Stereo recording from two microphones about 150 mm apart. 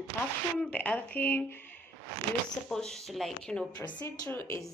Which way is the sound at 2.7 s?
5° left (ahead or behind).